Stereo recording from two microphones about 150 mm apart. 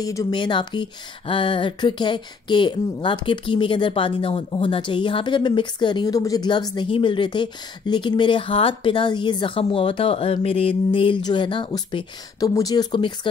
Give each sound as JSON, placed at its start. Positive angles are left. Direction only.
{"t": 0.0, "sound": "speech", "side_deg": 25}